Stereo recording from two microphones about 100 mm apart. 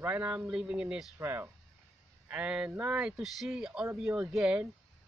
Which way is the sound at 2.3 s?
10° right (ahead or behind).